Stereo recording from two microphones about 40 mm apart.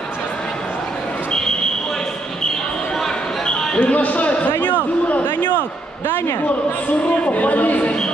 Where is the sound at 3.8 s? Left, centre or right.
Left.